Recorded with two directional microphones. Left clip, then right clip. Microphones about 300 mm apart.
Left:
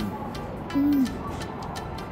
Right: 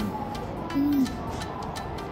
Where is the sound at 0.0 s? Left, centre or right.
Centre.